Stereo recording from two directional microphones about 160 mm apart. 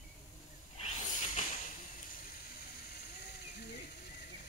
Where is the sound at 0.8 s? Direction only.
45° left (ahead or behind).